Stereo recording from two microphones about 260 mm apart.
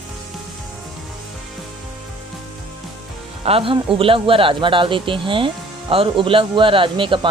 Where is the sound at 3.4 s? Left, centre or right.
Right.